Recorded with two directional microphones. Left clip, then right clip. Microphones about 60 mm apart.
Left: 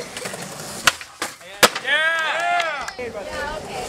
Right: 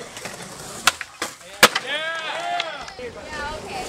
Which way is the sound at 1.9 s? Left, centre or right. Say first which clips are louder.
Left 7 dB; left.